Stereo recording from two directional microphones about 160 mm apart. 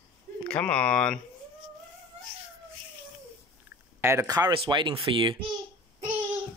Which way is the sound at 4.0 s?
15° right (ahead or behind).